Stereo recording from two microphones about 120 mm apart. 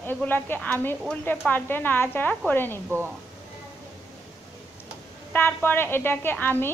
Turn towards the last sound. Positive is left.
turn(degrees=15)  # may be behind; listen again after turning